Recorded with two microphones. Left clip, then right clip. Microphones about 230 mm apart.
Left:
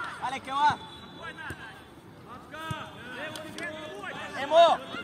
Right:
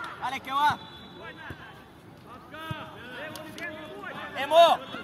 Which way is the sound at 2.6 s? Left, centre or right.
Left.